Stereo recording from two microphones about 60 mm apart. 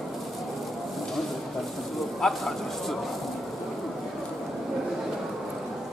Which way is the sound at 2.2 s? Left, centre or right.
Centre.